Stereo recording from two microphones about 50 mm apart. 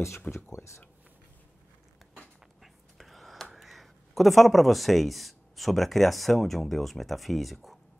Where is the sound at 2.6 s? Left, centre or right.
Centre.